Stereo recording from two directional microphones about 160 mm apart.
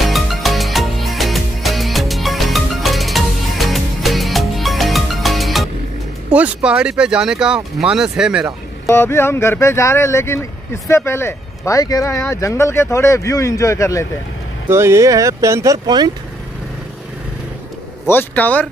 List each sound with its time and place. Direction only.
0.0 s music: centre (ahead or behind)
6.3 s speech: 5° right (ahead or behind)
8.8 s speech: 15° left (ahead or behind)
14.7 s speech: 15° right (ahead or behind)
18.0 s speech: 10° left (ahead or behind)